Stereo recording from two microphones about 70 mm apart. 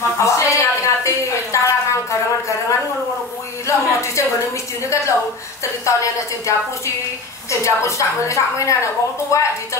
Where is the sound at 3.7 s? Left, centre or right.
Left.